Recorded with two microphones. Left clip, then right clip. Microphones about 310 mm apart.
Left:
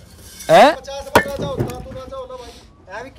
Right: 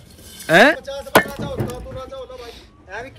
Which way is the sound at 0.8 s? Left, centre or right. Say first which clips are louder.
Even; left.